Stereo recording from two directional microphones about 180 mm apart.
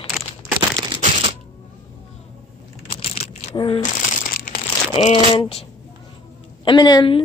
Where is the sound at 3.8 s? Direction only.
45° left (ahead or behind).